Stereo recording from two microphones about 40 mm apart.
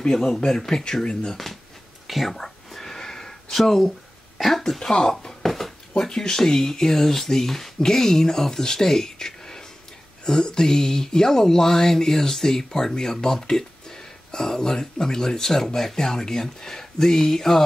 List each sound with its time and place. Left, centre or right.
0.0 s speech: centre
2.0 s whispering: centre
4.4 s speech: centre
4.7 s speech: centre